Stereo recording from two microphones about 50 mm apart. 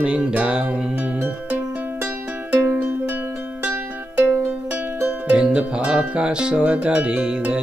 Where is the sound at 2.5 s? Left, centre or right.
Right.